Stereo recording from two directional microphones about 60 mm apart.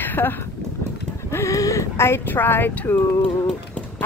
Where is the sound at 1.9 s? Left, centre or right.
Left.